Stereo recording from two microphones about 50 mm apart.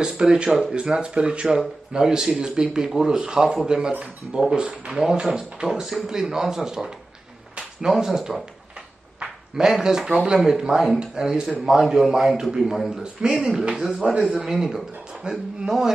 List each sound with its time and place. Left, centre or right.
0.0 s a man's voice: centre
13.0 s speech: centre